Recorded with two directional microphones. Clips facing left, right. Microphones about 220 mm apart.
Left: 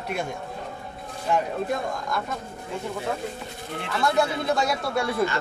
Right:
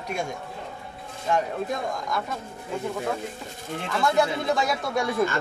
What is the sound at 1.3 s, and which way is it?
Speech, centre (ahead or behind).